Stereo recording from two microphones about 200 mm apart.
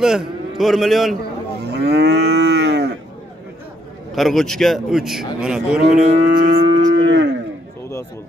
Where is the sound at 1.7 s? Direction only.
55° right (ahead or behind).